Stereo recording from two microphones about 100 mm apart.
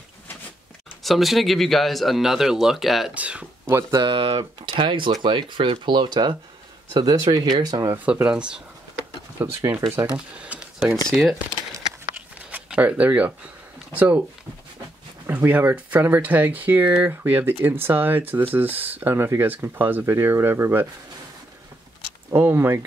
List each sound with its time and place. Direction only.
1.0 s speech: centre (ahead or behind)
3.2 s speech: 10° right (ahead or behind)
3.9 s speech: 55° right (ahead or behind)
7.9 s speech: 15° right (ahead or behind)
9.4 s speech: 25° right (ahead or behind)
10.1 s a sound: 10° right (ahead or behind)
11.1 s speech: 5° left (ahead or behind)
12.4 s speech: 15° right (ahead or behind)
15.2 s speech: 20° right (ahead or behind)
22.3 s speech: 20° right (ahead or behind)